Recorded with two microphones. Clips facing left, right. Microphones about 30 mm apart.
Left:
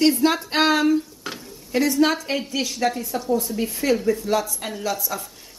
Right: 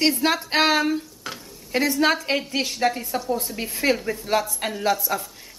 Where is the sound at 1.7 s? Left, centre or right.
Centre.